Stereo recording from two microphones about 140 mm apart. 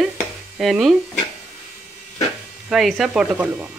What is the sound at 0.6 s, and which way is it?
Speech, centre (ahead or behind).